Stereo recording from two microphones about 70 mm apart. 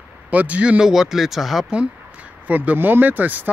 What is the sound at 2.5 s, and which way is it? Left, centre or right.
Speech, right.